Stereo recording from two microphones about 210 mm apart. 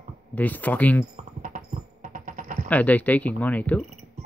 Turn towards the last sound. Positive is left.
turn(degrees=5)  # may be behind; listen again after turning